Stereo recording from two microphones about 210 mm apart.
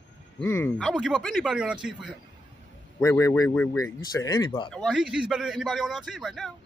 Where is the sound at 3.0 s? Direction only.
15° left (ahead or behind).